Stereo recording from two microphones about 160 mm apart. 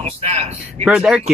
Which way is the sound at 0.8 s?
5° right (ahead or behind).